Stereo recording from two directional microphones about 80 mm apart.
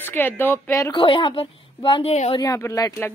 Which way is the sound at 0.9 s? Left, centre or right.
Left.